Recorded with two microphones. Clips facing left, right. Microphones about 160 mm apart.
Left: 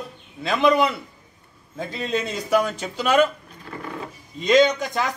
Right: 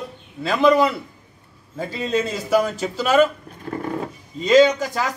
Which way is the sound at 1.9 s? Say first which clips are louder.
Right 3 dB; centre (ahead or behind).